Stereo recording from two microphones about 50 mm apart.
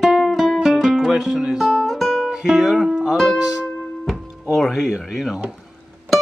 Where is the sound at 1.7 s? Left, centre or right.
Centre.